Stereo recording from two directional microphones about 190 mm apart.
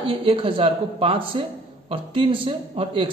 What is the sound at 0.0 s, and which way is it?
A woman's voice, 30° right (ahead or behind).